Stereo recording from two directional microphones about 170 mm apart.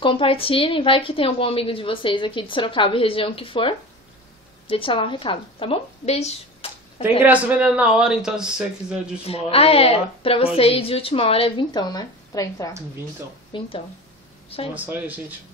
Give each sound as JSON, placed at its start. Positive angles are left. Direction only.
{"t": 0.0, "sound": "a woman's voice", "side_deg": 30}
{"t": 7.0, "sound": "a man's voice", "side_deg": -10}
{"t": 9.3, "sound": "a woman's voice", "side_deg": 35}
{"t": 13.5, "sound": "speech", "side_deg": 30}
{"t": 14.7, "sound": "speech", "side_deg": -10}